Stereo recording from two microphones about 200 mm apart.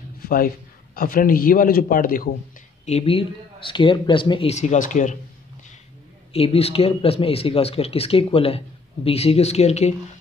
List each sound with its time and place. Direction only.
0.2 s a sound: 45° left (ahead or behind)
0.9 s a man's voice: 45° left (ahead or behind)
2.8 s speech: 30° left (ahead or behind)
6.3 s speech: 30° left (ahead or behind)